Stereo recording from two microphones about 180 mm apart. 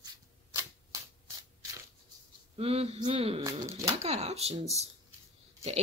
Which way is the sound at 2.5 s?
35° right (ahead or behind).